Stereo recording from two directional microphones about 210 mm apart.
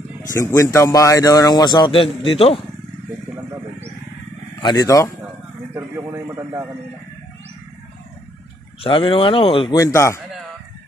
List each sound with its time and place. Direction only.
0.3 s speech: 15° left (ahead or behind)
4.6 s speech: 20° left (ahead or behind)
5.8 s a sound: 15° right (ahead or behind)
8.8 s a man's voice: 25° left (ahead or behind)